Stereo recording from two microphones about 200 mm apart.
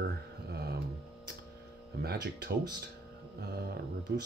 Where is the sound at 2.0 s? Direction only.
55° right (ahead or behind).